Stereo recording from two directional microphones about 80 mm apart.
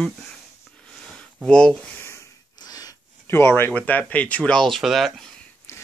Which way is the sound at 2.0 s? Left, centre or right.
Left.